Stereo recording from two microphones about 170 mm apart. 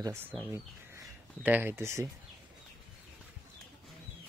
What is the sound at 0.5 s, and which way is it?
Speech, 10° right (ahead or behind).